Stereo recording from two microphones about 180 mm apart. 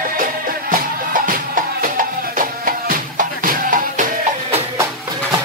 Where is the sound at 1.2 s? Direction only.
50° right (ahead or behind).